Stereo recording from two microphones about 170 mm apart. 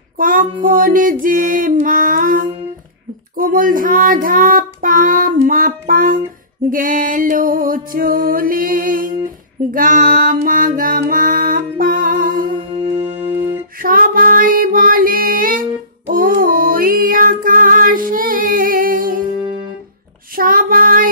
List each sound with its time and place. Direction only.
0.2 s child singing: 55° right (ahead or behind)
6.7 s music: 55° right (ahead or behind)
12.5 s music: 30° right (ahead or behind)
13.7 s female singing: 55° right (ahead or behind)
16.1 s music: 55° right (ahead or behind)
20.3 s female singing: 55° right (ahead or behind)